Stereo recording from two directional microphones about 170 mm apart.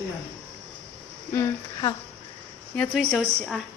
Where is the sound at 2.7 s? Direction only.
Centre (ahead or behind).